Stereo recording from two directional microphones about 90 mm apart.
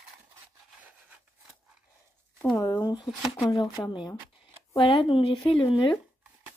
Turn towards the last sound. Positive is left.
turn(degrees=70)  # may be behind; listen again after turning